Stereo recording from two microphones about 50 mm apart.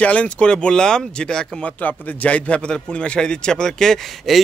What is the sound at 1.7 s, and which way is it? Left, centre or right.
A man's voice, left.